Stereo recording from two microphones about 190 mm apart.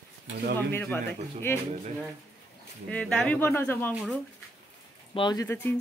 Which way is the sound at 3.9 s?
5° right (ahead or behind).